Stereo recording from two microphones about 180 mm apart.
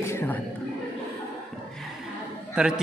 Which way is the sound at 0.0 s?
10° left (ahead or behind).